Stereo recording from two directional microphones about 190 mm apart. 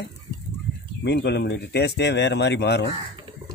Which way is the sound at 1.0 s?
65° left (ahead or behind).